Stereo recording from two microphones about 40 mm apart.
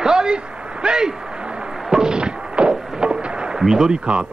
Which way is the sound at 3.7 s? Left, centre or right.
Centre.